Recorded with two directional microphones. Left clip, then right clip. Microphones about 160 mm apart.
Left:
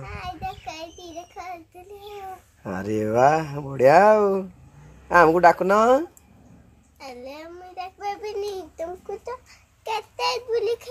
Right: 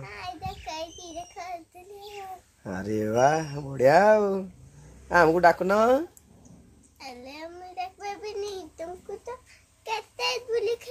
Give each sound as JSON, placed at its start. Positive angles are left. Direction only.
{"t": 0.0, "sound": "child singing", "side_deg": -10}
{"t": 2.6, "sound": "speech", "side_deg": 25}
{"t": 7.0, "sound": "child singing", "side_deg": -5}